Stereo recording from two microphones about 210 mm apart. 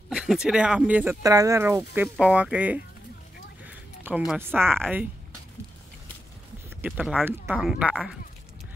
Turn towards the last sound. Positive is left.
turn(degrees=-5)  # may be behind; listen again after turning